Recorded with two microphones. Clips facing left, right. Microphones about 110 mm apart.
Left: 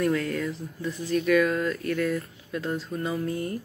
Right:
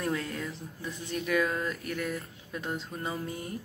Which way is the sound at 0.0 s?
20° right (ahead or behind).